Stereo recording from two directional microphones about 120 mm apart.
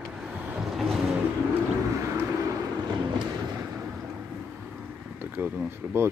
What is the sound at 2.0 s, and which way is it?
Vehicle, 25° right (ahead or behind).